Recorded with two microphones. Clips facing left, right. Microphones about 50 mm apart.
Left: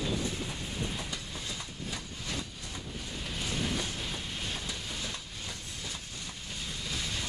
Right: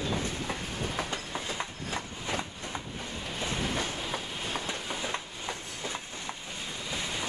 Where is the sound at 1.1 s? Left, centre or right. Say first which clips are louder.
Right 5 dB; right.